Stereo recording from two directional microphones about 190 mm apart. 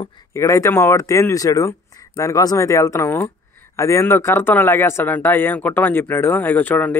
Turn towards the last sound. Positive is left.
turn(degrees=10)  # may be behind; listen again after turning